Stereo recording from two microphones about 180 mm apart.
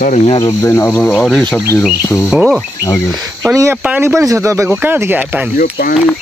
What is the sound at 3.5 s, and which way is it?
Speech, 15° right (ahead or behind).